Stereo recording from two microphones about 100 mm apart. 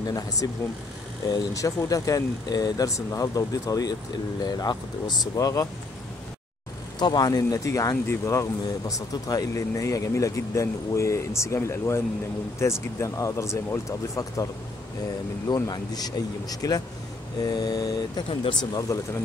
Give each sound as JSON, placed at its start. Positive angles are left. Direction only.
{"t": 0.0, "sound": "speech", "side_deg": 35}
{"t": 7.0, "sound": "speech", "side_deg": 45}
{"t": 18.3, "sound": "speech", "side_deg": 65}
{"t": 18.6, "sound": "speech", "side_deg": 45}